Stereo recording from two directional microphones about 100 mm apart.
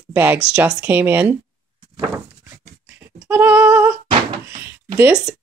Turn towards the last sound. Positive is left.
turn(degrees=-25)  # may be behind; listen again after turning